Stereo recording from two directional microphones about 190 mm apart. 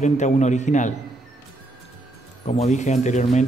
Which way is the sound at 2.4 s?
35° left (ahead or behind).